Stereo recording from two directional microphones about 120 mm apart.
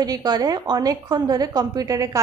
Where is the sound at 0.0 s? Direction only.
35° right (ahead or behind).